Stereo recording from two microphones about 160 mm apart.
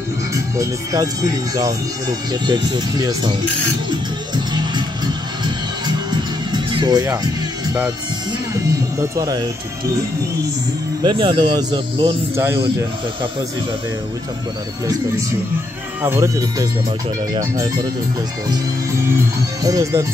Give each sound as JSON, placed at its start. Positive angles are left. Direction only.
{"t": 0.3, "sound": "speech", "side_deg": -20}
{"t": 5.4, "sound": "music", "side_deg": -25}
{"t": 8.3, "sound": "speech", "side_deg": -20}
{"t": 11.0, "sound": "speech", "side_deg": -30}
{"t": 16.0, "sound": "speech", "side_deg": -15}
{"t": 19.6, "sound": "speech", "side_deg": -20}